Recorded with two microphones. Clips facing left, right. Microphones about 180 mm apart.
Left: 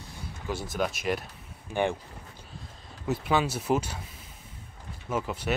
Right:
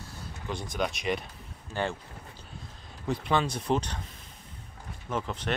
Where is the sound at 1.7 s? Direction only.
15° left (ahead or behind).